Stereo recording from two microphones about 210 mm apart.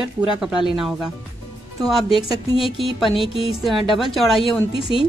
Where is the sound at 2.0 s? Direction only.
25° left (ahead or behind).